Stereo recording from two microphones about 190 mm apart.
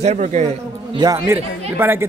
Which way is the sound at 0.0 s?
40° right (ahead or behind).